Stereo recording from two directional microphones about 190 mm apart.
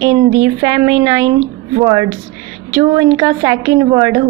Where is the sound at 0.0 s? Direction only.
20° right (ahead or behind).